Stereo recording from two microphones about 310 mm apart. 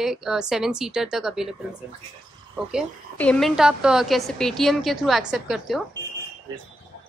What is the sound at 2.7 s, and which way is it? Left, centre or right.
Speech, centre.